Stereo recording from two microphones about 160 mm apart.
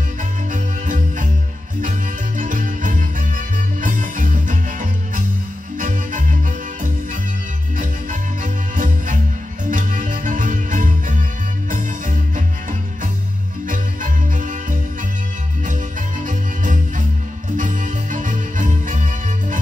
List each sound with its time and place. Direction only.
0.5 s music: 55° right (ahead or behind)
7.7 s music: 55° right (ahead or behind)
13.7 s music: 55° right (ahead or behind)
16.3 s music: 55° right (ahead or behind)